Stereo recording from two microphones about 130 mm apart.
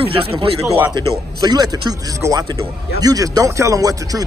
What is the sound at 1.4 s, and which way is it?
Speech, 30° right (ahead or behind).